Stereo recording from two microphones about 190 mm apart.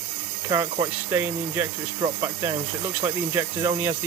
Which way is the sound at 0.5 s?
15° right (ahead or behind).